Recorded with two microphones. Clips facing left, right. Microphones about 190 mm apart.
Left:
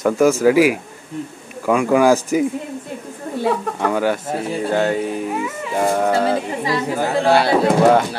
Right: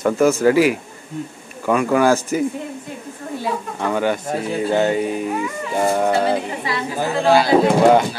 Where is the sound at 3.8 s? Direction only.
5° left (ahead or behind).